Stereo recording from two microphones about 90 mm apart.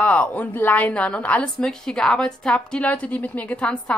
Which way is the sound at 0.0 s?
15° left (ahead or behind).